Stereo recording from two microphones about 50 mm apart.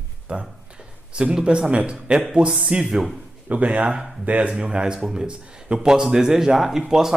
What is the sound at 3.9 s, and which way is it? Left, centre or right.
Speech, centre.